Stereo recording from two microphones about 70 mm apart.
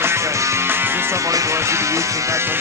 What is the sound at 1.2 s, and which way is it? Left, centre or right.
Music, right.